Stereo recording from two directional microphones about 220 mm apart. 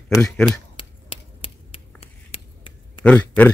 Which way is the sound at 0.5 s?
25° left (ahead or behind).